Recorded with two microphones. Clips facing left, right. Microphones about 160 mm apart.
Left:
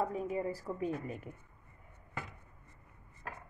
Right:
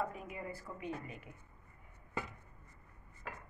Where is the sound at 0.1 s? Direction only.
35° left (ahead or behind).